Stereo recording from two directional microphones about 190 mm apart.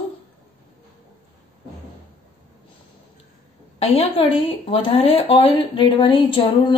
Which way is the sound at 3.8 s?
30° left (ahead or behind).